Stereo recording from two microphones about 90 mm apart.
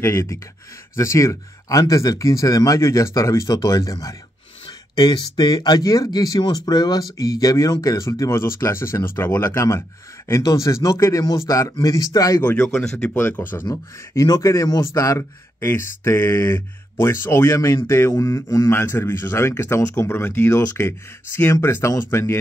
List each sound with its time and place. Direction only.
0.0 s speech: 30° left (ahead or behind)
4.6 s speech: 50° left (ahead or behind)
12.4 s speech: 15° left (ahead or behind)
13.1 s speech: 25° left (ahead or behind)
13.7 s speech: 50° left (ahead or behind)
14.4 s speech: 35° left (ahead or behind)
18.1 s speech: 40° left (ahead or behind)
18.7 s speech: 25° left (ahead or behind)